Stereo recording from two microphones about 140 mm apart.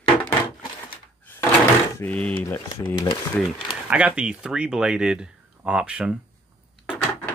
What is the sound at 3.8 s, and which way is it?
Speech, 10° right (ahead or behind).